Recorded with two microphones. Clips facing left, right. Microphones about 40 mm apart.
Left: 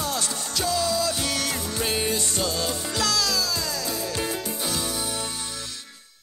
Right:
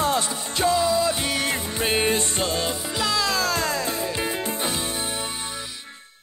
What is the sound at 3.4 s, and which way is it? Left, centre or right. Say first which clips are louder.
Music: right 5 dB; right.